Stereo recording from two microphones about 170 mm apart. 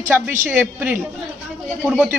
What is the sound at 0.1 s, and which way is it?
Speech, 10° right (ahead or behind).